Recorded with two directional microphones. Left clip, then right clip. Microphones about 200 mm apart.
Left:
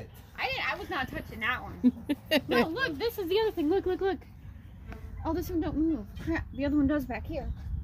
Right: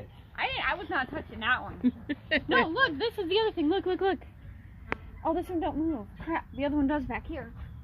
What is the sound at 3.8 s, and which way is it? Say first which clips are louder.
Speech: right 1 dB; 45° right (ahead or behind).